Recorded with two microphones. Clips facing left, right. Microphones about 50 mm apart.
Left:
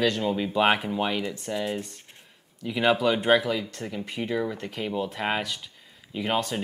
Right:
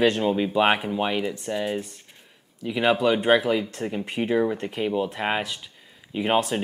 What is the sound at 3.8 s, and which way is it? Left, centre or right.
Speech, right.